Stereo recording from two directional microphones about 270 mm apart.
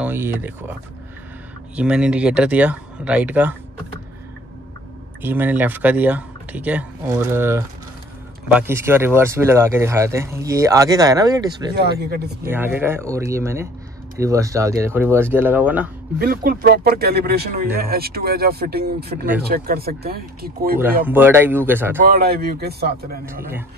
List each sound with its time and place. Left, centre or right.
0.0 s speech: centre
1.8 s speech: centre
5.2 s speech: centre
11.7 s speech: right
12.4 s speech: centre
16.2 s speech: right
21.1 s speech: centre
22.0 s speech: right